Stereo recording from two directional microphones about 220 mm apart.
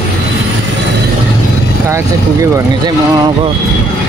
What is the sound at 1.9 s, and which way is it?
Speech, 15° right (ahead or behind).